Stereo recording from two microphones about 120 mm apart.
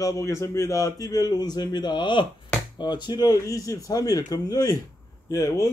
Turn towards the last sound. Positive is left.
turn(degrees=30)  # may be behind; listen again after turning